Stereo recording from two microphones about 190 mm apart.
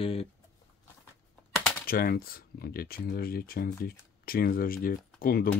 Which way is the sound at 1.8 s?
50° left (ahead or behind).